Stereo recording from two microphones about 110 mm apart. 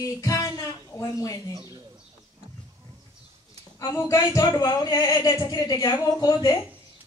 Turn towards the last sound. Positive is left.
turn(degrees=40)  # may be behind; listen again after turning